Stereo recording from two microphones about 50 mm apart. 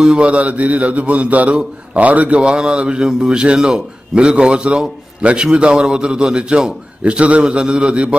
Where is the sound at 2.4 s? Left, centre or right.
Centre.